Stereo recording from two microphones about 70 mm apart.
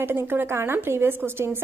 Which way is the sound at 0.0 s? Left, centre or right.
Right.